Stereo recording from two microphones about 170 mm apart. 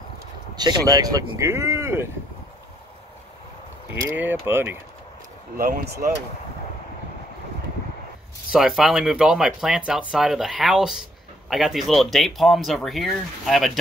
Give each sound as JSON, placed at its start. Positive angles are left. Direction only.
{"t": 0.6, "sound": "speech", "side_deg": -25}
{"t": 4.0, "sound": "speech", "side_deg": -15}
{"t": 5.6, "sound": "speech", "side_deg": -60}
{"t": 8.5, "sound": "speech", "side_deg": -5}